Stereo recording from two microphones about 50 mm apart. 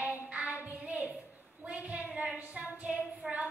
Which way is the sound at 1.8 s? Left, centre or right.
Right.